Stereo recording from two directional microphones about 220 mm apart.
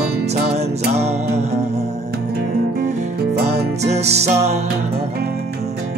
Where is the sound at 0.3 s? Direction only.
30° right (ahead or behind).